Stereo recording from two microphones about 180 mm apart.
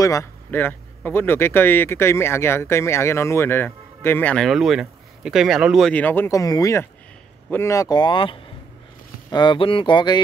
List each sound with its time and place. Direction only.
0.0 s speech: 15° left (ahead or behind)